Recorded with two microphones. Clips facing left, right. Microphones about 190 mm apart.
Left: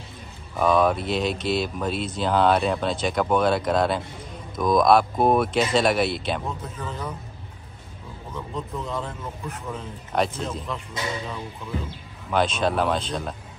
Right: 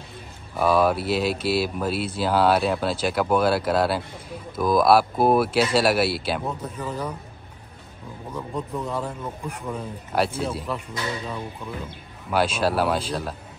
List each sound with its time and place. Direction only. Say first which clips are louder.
0.6 s speech: even; 5° right (ahead or behind)
8.3 s speech: right 2 dB; 10° right (ahead or behind)
12.3 s speech: even; 5° right (ahead or behind)